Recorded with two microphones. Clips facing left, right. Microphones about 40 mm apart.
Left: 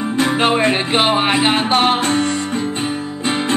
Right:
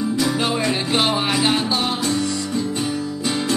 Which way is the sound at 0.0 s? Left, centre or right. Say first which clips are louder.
Left 4 dB; left.